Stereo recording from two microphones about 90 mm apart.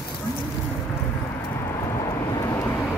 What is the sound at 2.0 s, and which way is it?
Vehicle, 40° left (ahead or behind).